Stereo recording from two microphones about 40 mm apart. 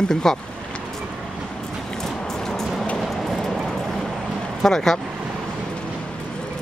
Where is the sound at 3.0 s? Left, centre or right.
Centre.